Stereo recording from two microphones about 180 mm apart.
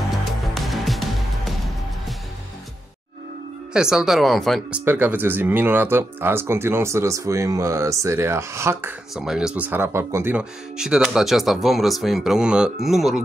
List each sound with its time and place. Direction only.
0.1 s music: centre (ahead or behind)
3.7 s speech: 5° right (ahead or behind)
9.1 s speech: 5° right (ahead or behind)